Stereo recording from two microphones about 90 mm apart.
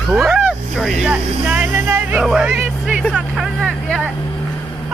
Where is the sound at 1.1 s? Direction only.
15° right (ahead or behind).